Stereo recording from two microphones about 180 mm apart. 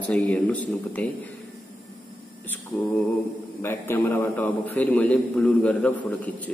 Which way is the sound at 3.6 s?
10° left (ahead or behind).